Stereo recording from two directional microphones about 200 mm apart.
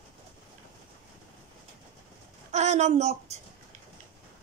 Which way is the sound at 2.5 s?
35° right (ahead or behind).